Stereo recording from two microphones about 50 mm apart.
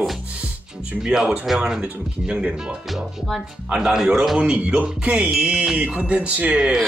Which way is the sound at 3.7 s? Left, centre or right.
Centre.